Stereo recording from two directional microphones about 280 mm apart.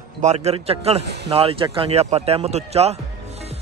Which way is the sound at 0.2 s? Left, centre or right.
Right.